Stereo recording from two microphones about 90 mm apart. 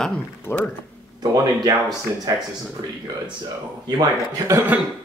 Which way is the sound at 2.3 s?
45° right (ahead or behind).